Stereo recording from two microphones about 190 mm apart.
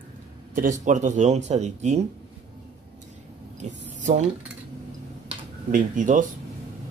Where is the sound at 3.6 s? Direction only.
40° right (ahead or behind).